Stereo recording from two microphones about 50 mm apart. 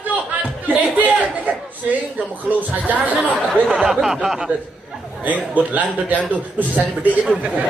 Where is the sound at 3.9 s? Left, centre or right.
Centre.